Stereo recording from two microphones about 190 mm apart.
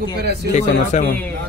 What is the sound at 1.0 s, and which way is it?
Speech, 10° left (ahead or behind).